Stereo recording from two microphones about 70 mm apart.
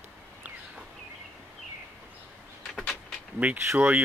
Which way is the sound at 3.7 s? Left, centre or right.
Right.